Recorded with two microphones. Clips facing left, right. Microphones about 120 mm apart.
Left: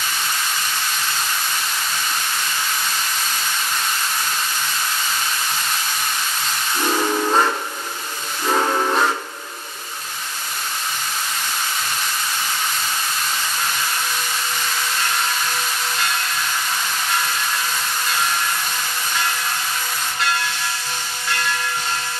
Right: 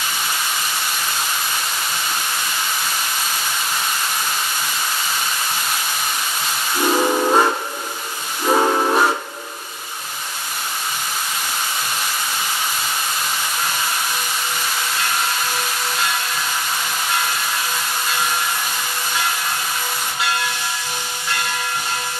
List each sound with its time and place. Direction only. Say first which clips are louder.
6.8 s steam whistle: right 3 dB; 15° right (ahead or behind)
8.5 s steam whistle: right 3 dB; 15° right (ahead or behind)